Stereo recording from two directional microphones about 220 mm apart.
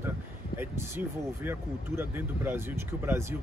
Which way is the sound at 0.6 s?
10° right (ahead or behind).